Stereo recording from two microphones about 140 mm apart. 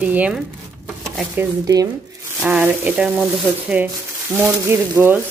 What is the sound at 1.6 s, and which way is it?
Speech, 25° right (ahead or behind).